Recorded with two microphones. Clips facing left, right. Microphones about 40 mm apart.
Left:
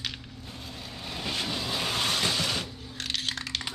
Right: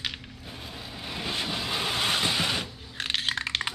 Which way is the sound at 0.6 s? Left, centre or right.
Centre.